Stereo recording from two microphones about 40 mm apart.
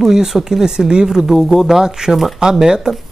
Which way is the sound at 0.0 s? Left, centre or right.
Centre.